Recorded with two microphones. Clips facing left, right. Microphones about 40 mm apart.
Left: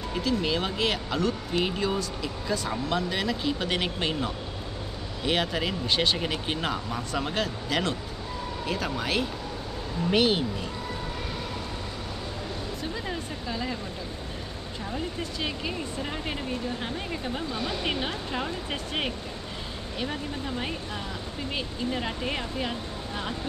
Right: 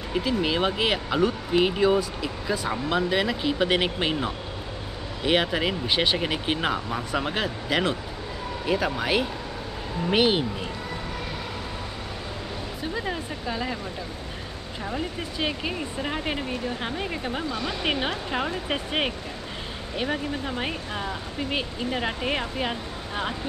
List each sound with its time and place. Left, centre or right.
0.1 s speech: centre
12.9 s speech: centre
14.9 s speech: centre